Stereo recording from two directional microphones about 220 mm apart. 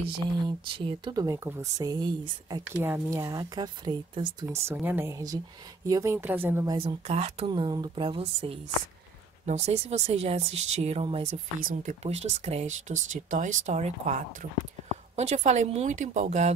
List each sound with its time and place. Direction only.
0.0 s a woman's voice: 25° right (ahead or behind)